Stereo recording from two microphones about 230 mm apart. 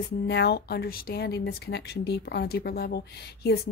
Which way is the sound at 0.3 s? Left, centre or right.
Left.